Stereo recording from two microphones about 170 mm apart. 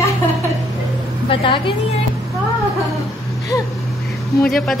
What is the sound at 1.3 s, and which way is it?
Speech, 30° left (ahead or behind).